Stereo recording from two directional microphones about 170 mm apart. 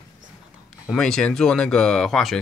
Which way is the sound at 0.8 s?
5° left (ahead or behind).